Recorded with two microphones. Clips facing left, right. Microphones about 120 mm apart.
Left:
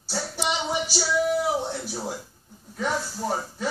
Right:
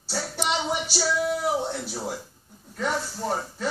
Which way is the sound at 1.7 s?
5° left (ahead or behind).